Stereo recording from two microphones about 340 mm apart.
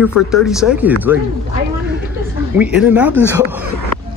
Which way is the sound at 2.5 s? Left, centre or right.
Centre.